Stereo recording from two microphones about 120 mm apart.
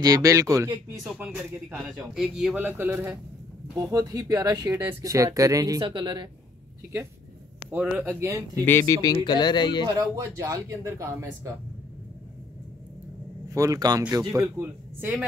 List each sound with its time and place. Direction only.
0.0 s a man's voice: 30° right (ahead or behind)
3.7 s speech: 30° right (ahead or behind)
5.8 s speech: 40° right (ahead or behind)
8.0 s speech: 25° right (ahead or behind)
8.6 s speech: 25° left (ahead or behind)
9.9 s speech: 25° right (ahead or behind)
13.5 s speech: 30° right (ahead or behind)